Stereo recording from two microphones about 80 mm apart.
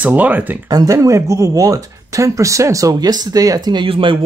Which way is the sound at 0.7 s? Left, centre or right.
Right.